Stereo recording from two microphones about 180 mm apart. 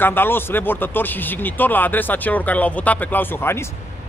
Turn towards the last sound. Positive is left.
turn(degrees=15)  # may be behind; listen again after turning